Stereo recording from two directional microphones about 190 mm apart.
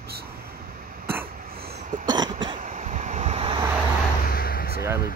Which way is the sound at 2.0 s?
20° right (ahead or behind).